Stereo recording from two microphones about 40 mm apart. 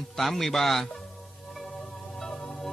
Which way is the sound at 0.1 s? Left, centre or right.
Centre.